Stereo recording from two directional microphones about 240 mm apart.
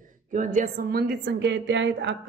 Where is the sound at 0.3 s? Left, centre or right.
Right.